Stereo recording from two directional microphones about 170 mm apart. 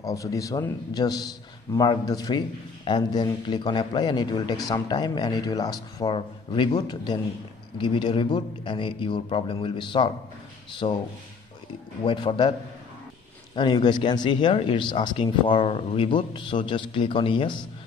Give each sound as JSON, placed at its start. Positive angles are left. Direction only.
{"t": 0.0, "sound": "a man's voice", "side_deg": 20}
{"t": 12.0, "sound": "a man's voice", "side_deg": 30}
{"t": 13.6, "sound": "a man's voice", "side_deg": 25}